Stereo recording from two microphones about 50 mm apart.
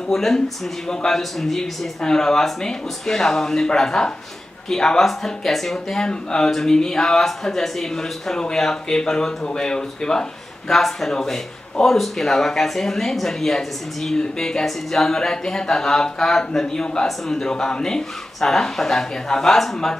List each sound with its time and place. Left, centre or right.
0.1 s speech: centre
6.0 s speech: centre